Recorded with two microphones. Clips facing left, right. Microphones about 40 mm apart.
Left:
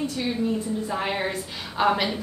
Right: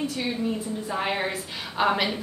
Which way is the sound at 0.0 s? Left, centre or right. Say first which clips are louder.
Left 1 dB; centre.